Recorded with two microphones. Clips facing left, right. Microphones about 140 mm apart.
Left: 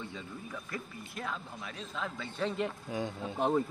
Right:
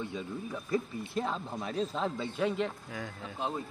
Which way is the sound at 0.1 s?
20° right (ahead or behind).